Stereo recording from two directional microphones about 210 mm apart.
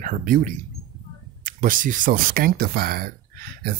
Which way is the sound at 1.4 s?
40° right (ahead or behind).